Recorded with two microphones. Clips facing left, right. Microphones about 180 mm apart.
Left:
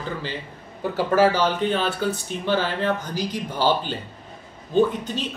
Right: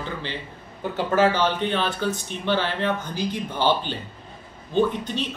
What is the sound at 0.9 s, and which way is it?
Speech, 10° left (ahead or behind).